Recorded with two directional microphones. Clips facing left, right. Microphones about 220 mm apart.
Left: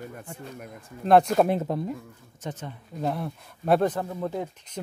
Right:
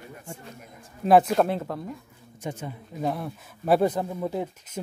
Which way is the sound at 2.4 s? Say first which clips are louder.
Right 2 dB; 10° right (ahead or behind).